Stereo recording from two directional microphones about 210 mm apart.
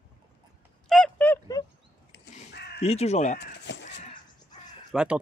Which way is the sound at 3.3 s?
55° left (ahead or behind).